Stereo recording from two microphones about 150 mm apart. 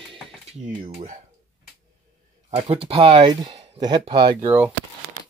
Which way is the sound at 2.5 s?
40° right (ahead or behind).